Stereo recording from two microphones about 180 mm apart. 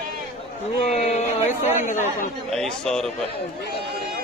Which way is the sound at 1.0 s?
40° left (ahead or behind).